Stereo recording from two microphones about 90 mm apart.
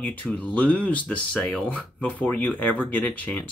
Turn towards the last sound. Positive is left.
turn(degrees=20)  # may be behind; listen again after turning